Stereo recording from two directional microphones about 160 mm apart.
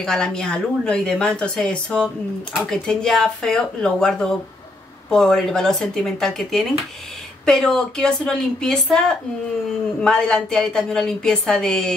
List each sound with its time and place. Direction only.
0.0 s a woman's voice: 5° left (ahead or behind)